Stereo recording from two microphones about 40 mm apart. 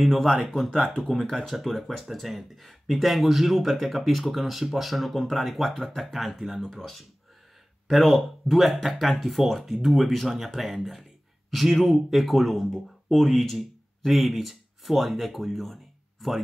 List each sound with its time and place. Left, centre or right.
0.0 s speech: centre
0.7 s speech: left
1.0 s speech: centre